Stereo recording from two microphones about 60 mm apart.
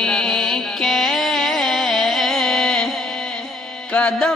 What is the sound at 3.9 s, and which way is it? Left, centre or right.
Mantra, centre.